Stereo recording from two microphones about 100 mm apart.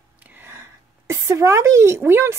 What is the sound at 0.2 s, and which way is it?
A woman's voice, 20° right (ahead or behind).